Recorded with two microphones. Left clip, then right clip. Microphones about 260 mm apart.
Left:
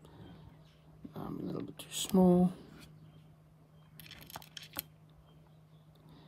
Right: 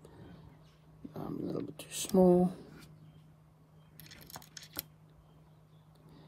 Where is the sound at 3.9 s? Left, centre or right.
Left.